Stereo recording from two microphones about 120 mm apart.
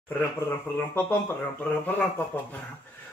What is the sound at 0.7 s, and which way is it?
Speech, 20° left (ahead or behind).